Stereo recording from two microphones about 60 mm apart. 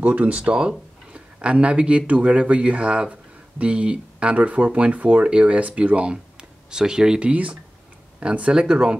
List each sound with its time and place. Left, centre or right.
0.0 s speech: right
0.4 s speech: centre